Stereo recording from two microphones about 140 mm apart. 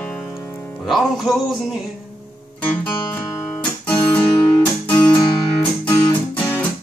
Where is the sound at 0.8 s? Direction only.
Centre (ahead or behind).